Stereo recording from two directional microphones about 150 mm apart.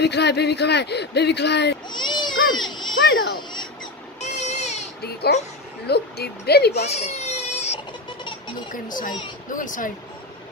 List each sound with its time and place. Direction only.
0.0 s speech: 90° left
1.9 s baby cry: 30° left (ahead or behind)
4.2 s baby cry: 50° left (ahead or behind)
5.0 s speech: 90° left
6.8 s baby cry: 45° left (ahead or behind)
8.7 s speech: 65° left (ahead or behind)